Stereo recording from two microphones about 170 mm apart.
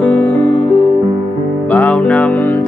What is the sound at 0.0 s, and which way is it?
Music, 10° left (ahead or behind).